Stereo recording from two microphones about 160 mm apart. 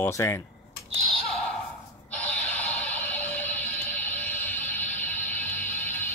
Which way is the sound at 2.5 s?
10° left (ahead or behind).